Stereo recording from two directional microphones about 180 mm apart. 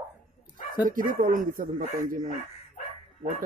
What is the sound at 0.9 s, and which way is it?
Speech, 50° right (ahead or behind).